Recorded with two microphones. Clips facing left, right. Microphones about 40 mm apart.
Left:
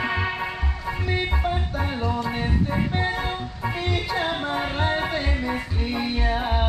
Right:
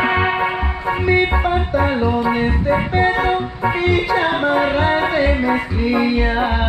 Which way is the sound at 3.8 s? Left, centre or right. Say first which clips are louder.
Right 10 dB; centre.